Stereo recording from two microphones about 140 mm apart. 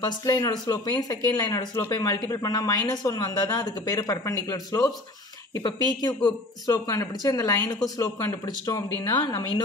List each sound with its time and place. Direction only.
0.0 s speech: 25° left (ahead or behind)